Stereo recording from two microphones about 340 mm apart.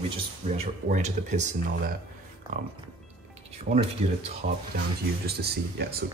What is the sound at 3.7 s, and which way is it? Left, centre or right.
Speech, right.